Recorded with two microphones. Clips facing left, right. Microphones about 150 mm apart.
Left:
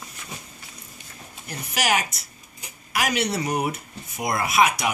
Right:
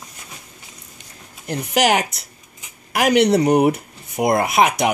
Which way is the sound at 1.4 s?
65° right (ahead or behind).